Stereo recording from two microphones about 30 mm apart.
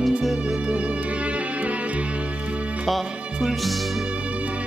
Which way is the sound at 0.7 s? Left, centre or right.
Right.